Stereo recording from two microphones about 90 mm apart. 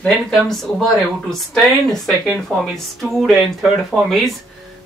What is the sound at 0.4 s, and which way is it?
Speech, 5° left (ahead or behind).